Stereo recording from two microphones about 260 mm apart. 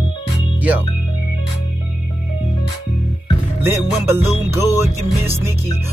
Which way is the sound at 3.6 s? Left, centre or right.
Centre.